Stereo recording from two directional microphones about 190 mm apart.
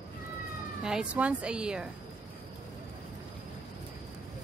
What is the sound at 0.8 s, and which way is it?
A woman's voice, 5° right (ahead or behind).